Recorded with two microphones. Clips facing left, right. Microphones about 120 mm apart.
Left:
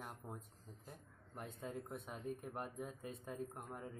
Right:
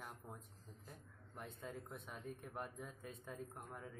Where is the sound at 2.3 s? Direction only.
5° left (ahead or behind).